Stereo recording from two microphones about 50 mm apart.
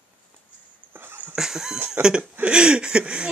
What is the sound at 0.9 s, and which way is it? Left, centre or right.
Dog, right.